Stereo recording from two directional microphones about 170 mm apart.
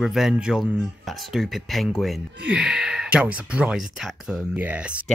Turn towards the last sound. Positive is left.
turn(degrees=-5)  # may be behind; listen again after turning